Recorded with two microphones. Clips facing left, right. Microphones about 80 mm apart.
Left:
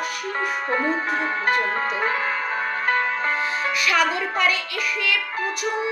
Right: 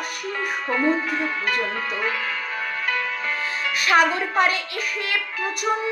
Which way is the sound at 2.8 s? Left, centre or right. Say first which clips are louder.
Left 5 dB; left.